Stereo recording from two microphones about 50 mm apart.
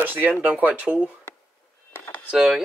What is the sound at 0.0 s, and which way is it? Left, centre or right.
Speech, right.